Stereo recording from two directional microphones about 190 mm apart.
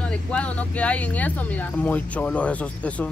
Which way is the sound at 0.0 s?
5° left (ahead or behind).